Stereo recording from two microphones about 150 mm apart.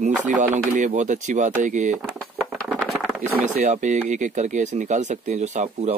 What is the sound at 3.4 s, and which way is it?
Speech, 55° right (ahead or behind).